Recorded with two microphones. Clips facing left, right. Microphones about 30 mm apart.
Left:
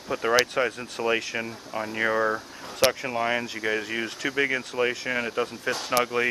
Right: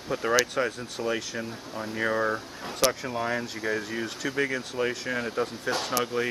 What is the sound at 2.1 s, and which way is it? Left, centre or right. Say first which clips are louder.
Speech: left 2 dB; centre.